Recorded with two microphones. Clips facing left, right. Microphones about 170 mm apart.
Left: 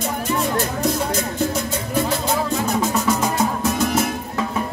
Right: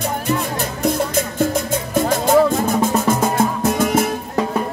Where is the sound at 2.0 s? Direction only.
50° right (ahead or behind).